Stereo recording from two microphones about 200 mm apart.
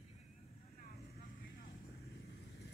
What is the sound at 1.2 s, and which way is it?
Vehicle, 50° left (ahead or behind).